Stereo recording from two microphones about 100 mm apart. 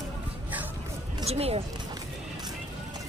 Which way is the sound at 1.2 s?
85° right.